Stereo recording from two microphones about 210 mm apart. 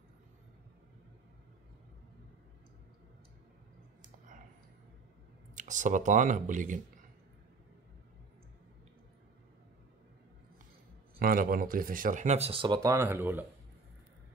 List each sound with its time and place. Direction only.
5.6 s speech: 35° right (ahead or behind)
11.1 s speech: 45° right (ahead or behind); by 13.5 s 10° right (ahead or behind)